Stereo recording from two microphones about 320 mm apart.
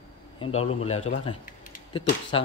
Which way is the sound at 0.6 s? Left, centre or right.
Centre.